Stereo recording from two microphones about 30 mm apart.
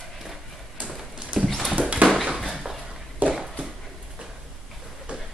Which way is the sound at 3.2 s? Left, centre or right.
Right.